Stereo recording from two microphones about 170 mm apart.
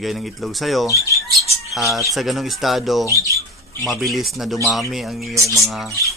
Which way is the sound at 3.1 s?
20° left (ahead or behind).